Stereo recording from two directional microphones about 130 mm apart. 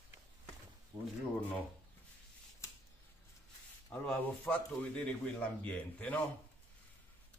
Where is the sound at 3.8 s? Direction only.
15° left (ahead or behind).